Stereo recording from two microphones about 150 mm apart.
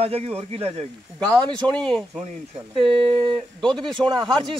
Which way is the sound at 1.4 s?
30° right (ahead or behind).